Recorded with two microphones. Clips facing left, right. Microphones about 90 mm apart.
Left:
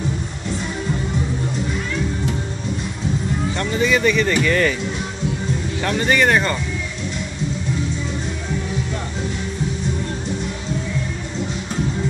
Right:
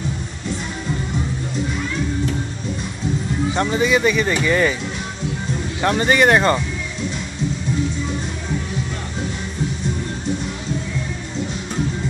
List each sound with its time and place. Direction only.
3.5 s speech: 15° right (ahead or behind)
5.9 s speech: 20° right (ahead or behind)